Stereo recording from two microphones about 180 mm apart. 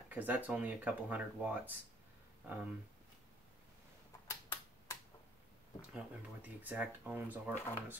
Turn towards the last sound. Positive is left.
turn(degrees=-10)  # may be behind; listen again after turning